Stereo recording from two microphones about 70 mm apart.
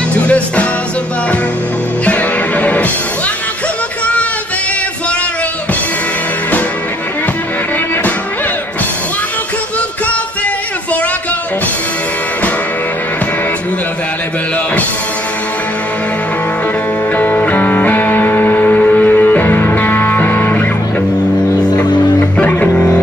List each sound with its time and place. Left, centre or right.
0.1 s music: centre
2.0 s music: centre
17.1 s music: left
22.4 s music: left